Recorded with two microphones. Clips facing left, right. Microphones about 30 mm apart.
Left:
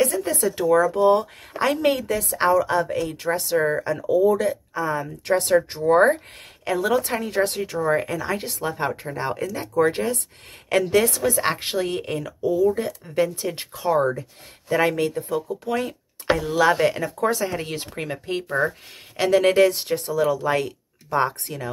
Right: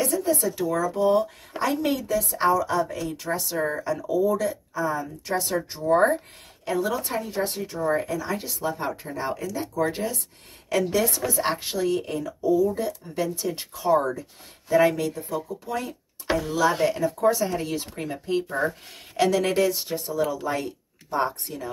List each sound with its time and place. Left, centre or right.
0.0 s speech: left
1.6 s speech: left
6.6 s speech: left
7.9 s speech: left
15.0 s speech: left
17.4 s speech: left
19.1 s speech: left
19.4 s speech: left